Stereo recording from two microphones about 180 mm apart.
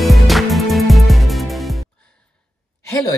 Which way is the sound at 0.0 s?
Centre (ahead or behind).